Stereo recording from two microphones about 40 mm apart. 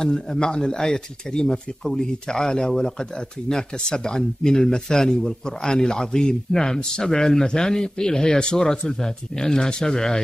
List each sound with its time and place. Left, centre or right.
0.0 s speech: centre